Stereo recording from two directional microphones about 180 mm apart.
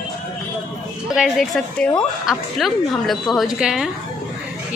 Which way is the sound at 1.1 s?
Centre (ahead or behind).